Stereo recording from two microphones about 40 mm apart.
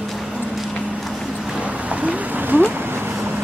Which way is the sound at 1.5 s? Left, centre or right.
Right.